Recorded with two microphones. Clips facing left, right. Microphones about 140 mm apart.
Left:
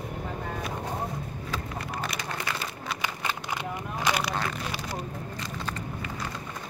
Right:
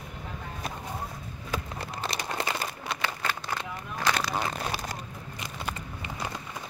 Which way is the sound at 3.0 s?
15° left (ahead or behind).